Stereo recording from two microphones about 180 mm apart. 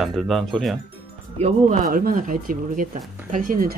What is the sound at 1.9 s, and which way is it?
Speech, 50° right (ahead or behind).